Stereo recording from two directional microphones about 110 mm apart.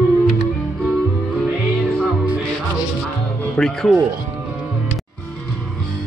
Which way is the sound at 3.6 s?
5° left (ahead or behind).